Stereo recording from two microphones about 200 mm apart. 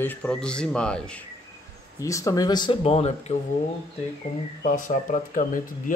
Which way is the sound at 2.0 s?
15° left (ahead or behind).